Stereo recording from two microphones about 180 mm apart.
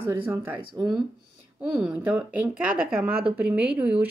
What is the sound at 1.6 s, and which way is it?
A woman's voice, 5° right (ahead or behind).